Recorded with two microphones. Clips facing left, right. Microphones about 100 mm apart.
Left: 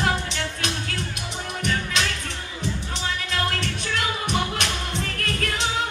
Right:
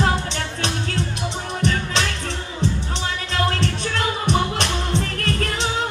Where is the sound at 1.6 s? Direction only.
35° right (ahead or behind).